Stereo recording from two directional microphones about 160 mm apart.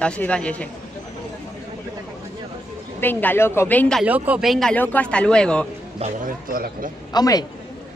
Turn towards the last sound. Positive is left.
turn(degrees=25)  # may be behind; listen again after turning